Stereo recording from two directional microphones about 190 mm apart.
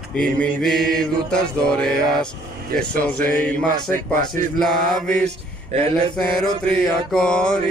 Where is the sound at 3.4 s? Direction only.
5° left (ahead or behind).